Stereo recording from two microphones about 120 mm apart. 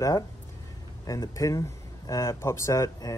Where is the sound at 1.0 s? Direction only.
30° left (ahead or behind).